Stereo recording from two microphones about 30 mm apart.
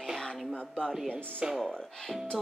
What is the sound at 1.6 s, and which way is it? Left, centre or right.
Speech, left.